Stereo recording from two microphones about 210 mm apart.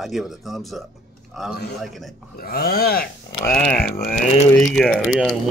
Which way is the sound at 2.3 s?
45° left (ahead or behind).